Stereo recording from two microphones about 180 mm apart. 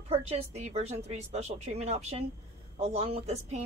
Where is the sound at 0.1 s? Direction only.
35° right (ahead or behind).